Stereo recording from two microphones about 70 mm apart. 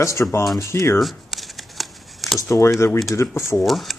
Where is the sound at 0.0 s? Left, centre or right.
Left.